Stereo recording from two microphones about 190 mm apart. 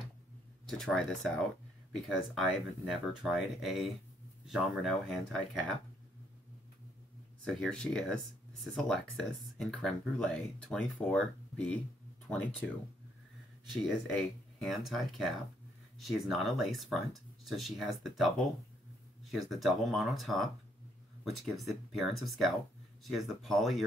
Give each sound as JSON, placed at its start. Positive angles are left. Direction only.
{"t": 0.7, "sound": "speech", "side_deg": 0}
{"t": 7.4, "sound": "speech", "side_deg": 0}
{"t": 13.8, "sound": "speech", "side_deg": 0}
{"t": 19.3, "sound": "speech", "side_deg": 0}